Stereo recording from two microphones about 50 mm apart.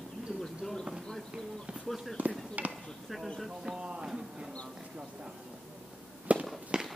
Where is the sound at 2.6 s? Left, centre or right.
Right.